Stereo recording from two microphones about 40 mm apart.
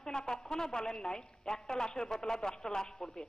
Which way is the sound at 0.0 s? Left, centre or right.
Centre.